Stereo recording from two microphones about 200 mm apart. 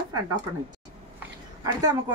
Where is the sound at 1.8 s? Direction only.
20° right (ahead or behind).